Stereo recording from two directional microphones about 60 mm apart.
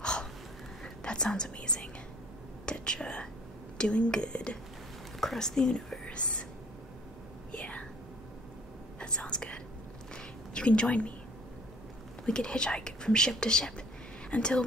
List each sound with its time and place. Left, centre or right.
0.0 s a sound: centre
0.8 s speech: centre
2.6 s whispering: centre
3.7 s speech: centre
6.0 s whispering: centre
7.5 s whispering: left
9.0 s whispering: centre
10.1 s a sound: centre
12.3 s speech: centre